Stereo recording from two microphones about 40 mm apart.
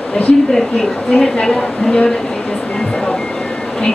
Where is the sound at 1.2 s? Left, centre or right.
Centre.